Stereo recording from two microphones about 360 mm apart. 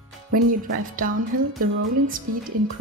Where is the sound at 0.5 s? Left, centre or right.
Right.